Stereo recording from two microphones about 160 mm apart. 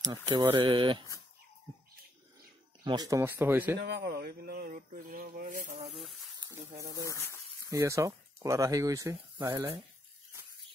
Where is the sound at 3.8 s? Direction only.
90° right; by 5.7 s 55° right (ahead or behind).